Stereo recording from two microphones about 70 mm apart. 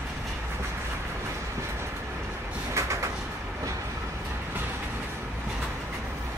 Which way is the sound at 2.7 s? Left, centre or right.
Right.